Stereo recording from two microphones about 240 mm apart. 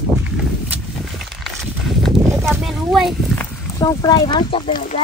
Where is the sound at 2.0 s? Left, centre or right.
Centre.